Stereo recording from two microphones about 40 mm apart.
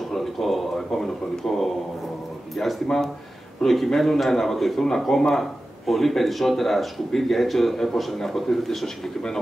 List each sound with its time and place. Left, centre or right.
0.1 s a man's voice: centre